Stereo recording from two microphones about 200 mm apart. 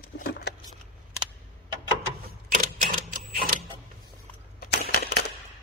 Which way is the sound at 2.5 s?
40° right (ahead or behind).